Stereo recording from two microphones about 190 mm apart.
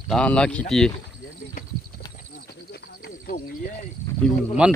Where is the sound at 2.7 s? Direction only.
55° left (ahead or behind).